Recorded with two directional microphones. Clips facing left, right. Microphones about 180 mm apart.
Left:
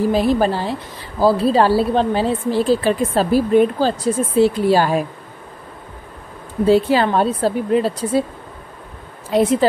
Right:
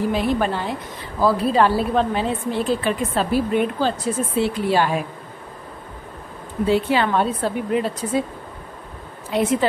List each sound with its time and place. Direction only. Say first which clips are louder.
0.1 s a woman's voice: left 5 dB; 35° left (ahead or behind)
6.6 s a woman's voice: left 5 dB; 40° left (ahead or behind)
9.3 s a woman's voice: left 4 dB; 35° left (ahead or behind)